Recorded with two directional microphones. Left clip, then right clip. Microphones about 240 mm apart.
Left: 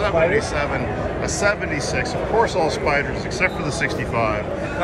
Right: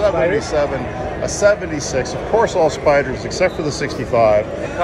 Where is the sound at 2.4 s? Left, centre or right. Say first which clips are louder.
Right 5 dB; right.